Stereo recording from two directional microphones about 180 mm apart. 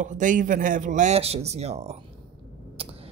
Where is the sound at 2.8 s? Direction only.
30° right (ahead or behind).